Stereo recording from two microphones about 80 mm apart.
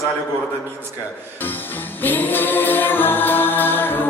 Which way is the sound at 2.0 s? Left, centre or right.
Left.